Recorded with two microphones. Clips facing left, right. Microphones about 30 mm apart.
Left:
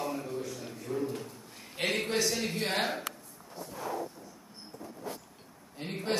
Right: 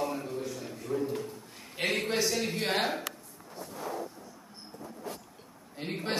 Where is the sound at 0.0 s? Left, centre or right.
Centre.